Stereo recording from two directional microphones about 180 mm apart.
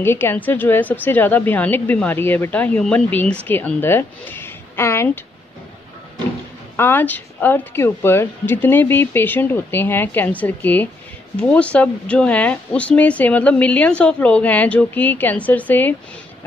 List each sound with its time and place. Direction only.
0.0 s speech: 10° left (ahead or behind)
6.8 s speech: 10° left (ahead or behind)